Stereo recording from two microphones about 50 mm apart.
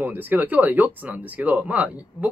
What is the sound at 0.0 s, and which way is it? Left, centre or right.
Speech, right.